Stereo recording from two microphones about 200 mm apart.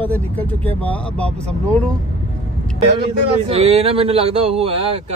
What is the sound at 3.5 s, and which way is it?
Speech, 30° right (ahead or behind).